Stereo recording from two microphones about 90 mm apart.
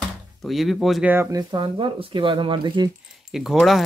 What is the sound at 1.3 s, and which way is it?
Speech, 40° right (ahead or behind).